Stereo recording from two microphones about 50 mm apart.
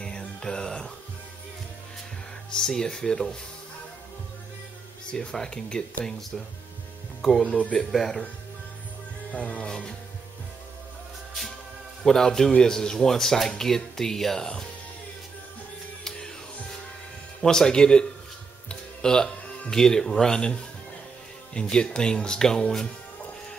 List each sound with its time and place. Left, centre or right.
0.0 s music: centre
2.5 s a man's voice: centre
5.1 s a man's voice: centre
7.4 s speech: left
7.9 s speech: centre
9.3 s speech: left
12.0 s a man's voice: centre
17.4 s a man's voice: centre
18.7 s music: centre
19.7 s a man's voice: centre
21.5 s a man's voice: centre